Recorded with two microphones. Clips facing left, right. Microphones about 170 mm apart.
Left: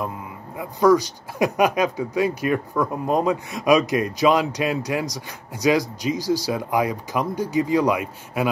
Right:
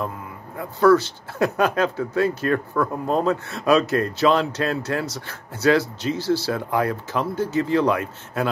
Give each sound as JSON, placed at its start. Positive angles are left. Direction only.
{"t": 0.6, "sound": "speech", "side_deg": 15}